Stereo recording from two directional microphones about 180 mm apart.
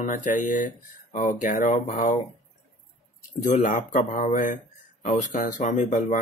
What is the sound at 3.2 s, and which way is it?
Speech, 45° left (ahead or behind).